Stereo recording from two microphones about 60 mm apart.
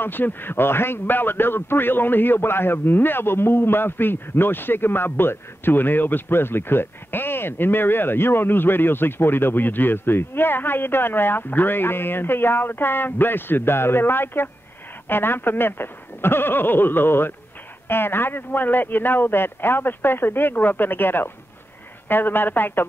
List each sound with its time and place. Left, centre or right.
0.0 s a man's voice: left